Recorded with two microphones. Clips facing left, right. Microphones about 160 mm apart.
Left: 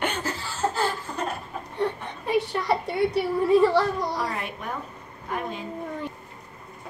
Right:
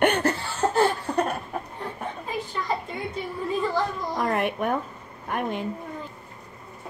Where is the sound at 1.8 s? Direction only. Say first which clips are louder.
Left 5 dB; 75° left (ahead or behind).